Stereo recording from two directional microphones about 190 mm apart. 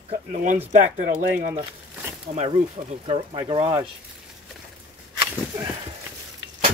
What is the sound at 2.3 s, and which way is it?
Speech, 35° right (ahead or behind).